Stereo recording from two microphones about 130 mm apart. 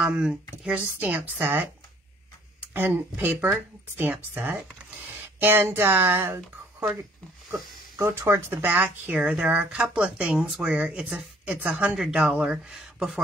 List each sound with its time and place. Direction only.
0.0 s speech: 5° right (ahead or behind)
7.5 s speech: 25° right (ahead or behind); by 13.2 s 5° right (ahead or behind)